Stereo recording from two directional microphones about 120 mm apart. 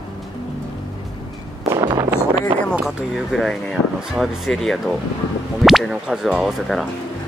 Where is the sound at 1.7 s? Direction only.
35° right (ahead or behind).